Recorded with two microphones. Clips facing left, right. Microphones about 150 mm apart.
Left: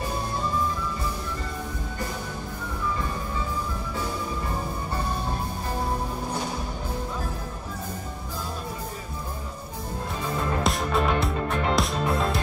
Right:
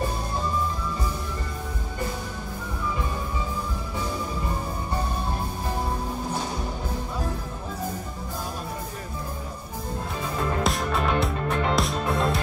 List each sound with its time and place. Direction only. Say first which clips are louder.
10.6 s music: left 2 dB; centre (ahead or behind)